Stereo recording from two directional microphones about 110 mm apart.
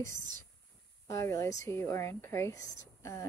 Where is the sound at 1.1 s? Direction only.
30° left (ahead or behind).